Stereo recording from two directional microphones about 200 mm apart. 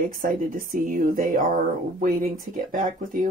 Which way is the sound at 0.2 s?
45° right (ahead or behind).